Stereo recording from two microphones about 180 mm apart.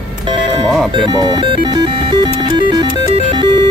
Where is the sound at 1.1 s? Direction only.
20° right (ahead or behind).